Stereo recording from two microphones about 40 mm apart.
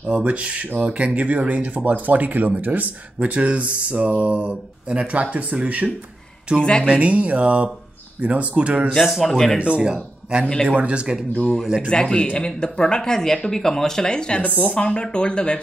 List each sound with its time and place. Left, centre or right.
0.1 s speech: right
3.2 s speech: right
6.6 s speech: left
6.9 s speech: right
9.3 s speech: centre
9.6 s speech: right
11.4 s speech: centre
11.9 s speech: left
14.0 s speech: left